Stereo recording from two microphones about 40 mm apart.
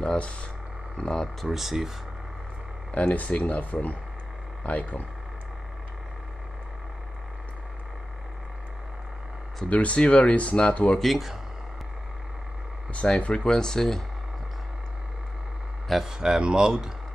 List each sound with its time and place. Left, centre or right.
0.0 s speech: left
1.4 s speech: centre
2.9 s speech: left
9.7 s speech: left
11.0 s speech: centre
12.9 s speech: left
16.0 s speech: centre